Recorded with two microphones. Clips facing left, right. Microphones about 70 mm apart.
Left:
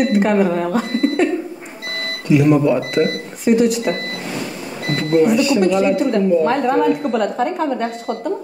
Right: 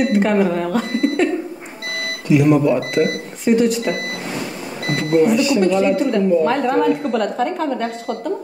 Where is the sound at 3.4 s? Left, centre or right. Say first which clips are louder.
Left 1 dB; centre.